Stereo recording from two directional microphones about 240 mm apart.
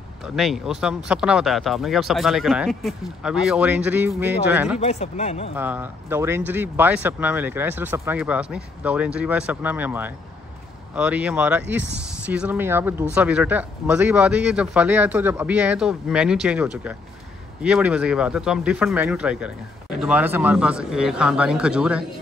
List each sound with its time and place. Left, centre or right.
0.4 s speech: centre
4.7 s speech: left
5.6 s speech: centre